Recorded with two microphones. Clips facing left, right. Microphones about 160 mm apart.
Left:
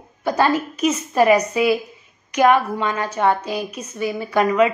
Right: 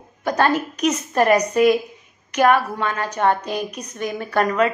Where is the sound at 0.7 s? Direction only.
5° left (ahead or behind).